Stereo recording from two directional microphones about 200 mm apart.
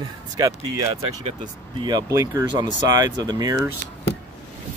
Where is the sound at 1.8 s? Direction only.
15° right (ahead or behind).